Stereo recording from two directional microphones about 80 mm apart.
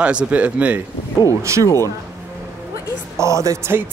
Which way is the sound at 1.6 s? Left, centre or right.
Left.